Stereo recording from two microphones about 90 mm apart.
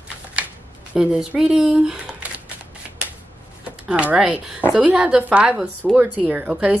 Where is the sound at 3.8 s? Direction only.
10° right (ahead or behind).